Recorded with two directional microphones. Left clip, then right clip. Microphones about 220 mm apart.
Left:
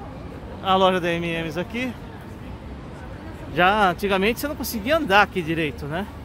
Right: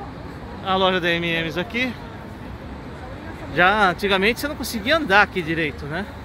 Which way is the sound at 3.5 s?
5° left (ahead or behind).